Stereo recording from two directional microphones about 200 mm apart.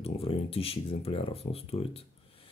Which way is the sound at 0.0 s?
30° left (ahead or behind).